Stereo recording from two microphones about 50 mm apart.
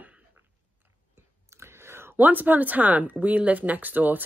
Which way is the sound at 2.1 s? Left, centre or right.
Right.